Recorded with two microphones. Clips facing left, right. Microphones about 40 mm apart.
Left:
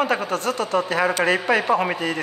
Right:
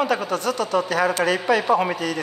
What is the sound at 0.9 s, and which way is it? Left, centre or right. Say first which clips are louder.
Speech: left 2 dB; left.